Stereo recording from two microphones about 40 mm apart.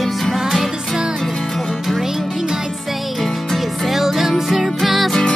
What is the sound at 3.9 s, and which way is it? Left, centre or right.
Music, centre.